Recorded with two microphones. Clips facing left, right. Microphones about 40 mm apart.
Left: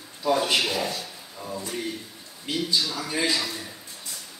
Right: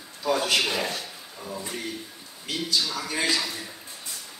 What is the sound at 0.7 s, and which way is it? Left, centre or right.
Speech, right.